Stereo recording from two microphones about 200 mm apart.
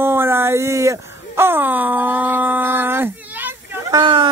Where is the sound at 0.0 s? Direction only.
10° right (ahead or behind).